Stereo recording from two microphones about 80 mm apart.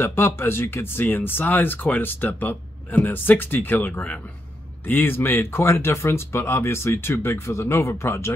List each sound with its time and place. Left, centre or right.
0.0 s speech: left